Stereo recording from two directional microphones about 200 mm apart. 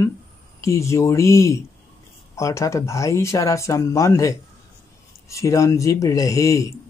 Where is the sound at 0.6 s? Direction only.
15° left (ahead or behind).